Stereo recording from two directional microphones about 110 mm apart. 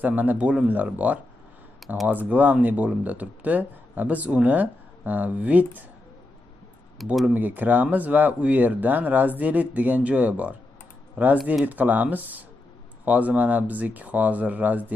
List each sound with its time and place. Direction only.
0.0 s speech: 15° right (ahead or behind)
7.0 s speech: centre (ahead or behind)
7.3 s speech: 15° right (ahead or behind)